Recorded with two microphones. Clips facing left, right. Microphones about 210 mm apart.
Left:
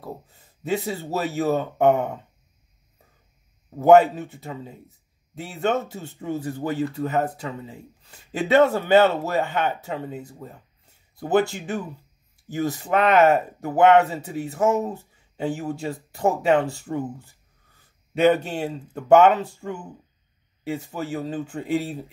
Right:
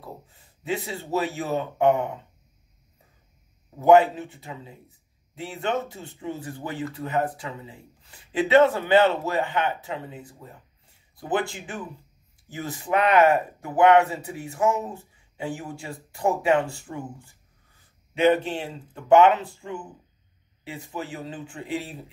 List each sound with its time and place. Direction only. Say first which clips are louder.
0.7 s speech: left 3 dB; 40° left (ahead or behind)
3.8 s speech: left 2 dB; 40° left (ahead or behind)